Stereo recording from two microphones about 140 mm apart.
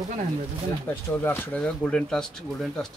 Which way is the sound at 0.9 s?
15° left (ahead or behind).